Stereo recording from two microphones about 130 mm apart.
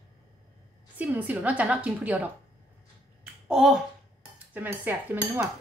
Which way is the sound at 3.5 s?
Centre (ahead or behind).